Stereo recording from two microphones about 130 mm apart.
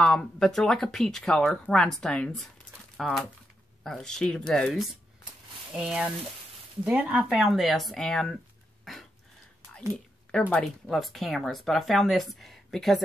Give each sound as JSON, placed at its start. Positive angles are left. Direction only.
{"t": 0.0, "sound": "speech", "side_deg": 5}
{"t": 5.7, "sound": "speech", "side_deg": -5}
{"t": 8.9, "sound": "a sound", "side_deg": 0}
{"t": 10.5, "sound": "speech", "side_deg": 0}